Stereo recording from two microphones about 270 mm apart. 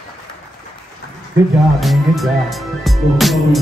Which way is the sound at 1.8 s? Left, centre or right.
Centre.